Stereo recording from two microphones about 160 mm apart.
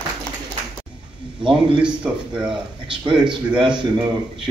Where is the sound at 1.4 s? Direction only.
5° right (ahead or behind).